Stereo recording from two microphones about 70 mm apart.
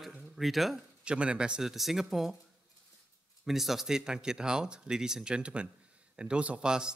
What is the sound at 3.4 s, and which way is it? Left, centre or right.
Speech, centre.